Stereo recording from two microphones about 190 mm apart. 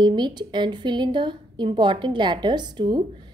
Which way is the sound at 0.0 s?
25° right (ahead or behind).